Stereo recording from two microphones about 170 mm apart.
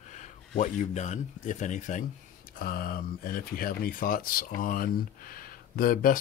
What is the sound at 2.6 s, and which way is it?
Speech, 60° left (ahead or behind).